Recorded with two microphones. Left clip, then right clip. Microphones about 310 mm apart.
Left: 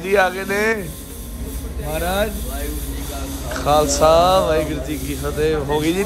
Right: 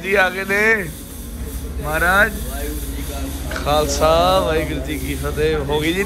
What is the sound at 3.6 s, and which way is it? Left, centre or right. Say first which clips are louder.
Speech: left 2 dB; centre.